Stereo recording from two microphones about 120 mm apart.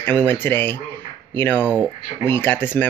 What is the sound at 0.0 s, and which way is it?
Speech, 15° left (ahead or behind).